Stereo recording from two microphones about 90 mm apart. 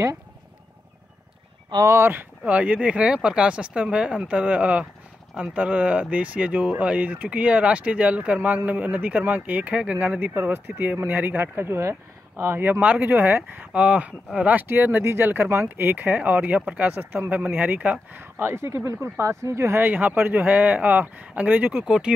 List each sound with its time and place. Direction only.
1.9 s speech: 25° right (ahead or behind); by 22.1 s 10° right (ahead or behind)